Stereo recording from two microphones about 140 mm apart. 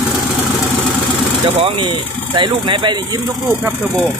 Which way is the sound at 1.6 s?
35° right (ahead or behind).